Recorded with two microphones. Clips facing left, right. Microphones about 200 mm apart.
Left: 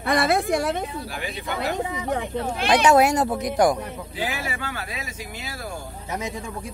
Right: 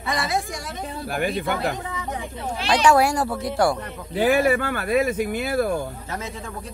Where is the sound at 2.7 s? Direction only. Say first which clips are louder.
Left 1 dB; 20° left (ahead or behind).